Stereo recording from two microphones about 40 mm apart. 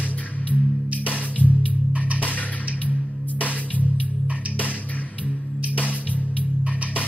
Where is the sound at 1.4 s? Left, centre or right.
Right.